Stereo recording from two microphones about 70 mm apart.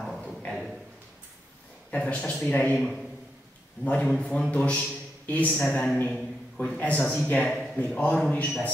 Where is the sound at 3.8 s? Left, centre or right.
Left.